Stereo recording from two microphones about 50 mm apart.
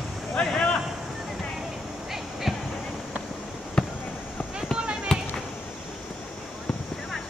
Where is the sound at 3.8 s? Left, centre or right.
Centre.